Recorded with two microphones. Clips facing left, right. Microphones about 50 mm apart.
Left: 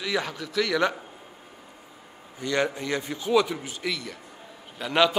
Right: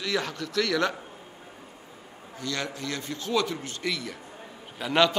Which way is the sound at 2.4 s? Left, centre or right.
Left.